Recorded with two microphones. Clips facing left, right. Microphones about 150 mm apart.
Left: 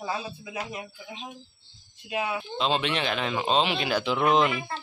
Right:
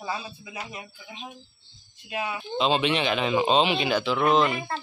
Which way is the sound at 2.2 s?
Centre (ahead or behind).